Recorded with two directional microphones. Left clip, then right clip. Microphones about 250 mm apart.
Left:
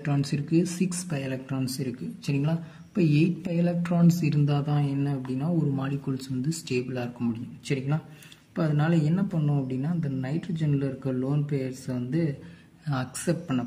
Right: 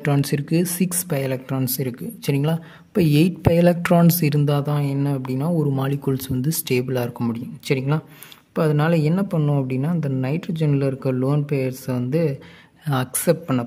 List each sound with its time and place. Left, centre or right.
0.0 s speech: right